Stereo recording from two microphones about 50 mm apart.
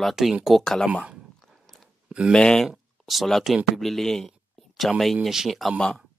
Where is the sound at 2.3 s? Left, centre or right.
Centre.